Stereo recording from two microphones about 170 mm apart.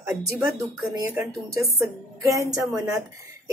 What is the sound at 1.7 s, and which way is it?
Speech, 20° right (ahead or behind).